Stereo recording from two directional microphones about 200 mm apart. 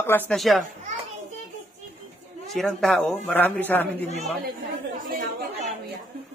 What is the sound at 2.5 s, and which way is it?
A man's voice, centre (ahead or behind).